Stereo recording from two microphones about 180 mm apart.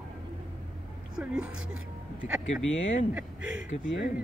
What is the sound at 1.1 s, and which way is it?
Speech, 5° right (ahead or behind).